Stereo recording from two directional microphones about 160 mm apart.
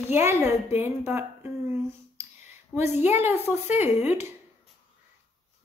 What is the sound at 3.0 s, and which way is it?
A woman's voice, 15° right (ahead or behind).